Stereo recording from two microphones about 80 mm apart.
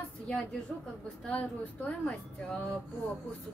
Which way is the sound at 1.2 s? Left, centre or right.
Centre.